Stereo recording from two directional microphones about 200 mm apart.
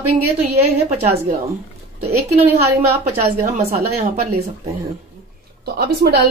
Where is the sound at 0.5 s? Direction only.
35° right (ahead or behind).